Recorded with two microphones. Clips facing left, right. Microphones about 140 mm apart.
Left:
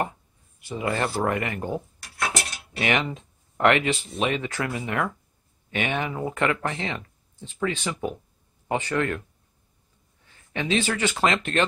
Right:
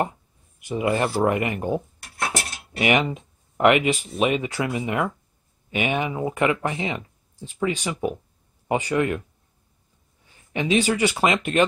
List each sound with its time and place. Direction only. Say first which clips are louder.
0.6 s speech: right 4 dB; 15° right (ahead or behind)
10.5 s speech: right 4 dB; 15° right (ahead or behind)